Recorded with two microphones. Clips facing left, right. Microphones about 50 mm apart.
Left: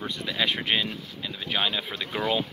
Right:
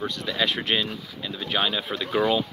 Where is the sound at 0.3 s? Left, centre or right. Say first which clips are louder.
Right 1 dB; centre.